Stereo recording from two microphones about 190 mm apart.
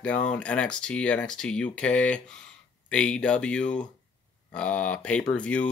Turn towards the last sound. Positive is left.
turn(degrees=5)  # may be behind; listen again after turning